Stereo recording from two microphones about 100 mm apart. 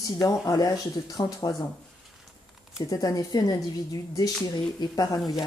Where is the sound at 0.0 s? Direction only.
40° left (ahead or behind).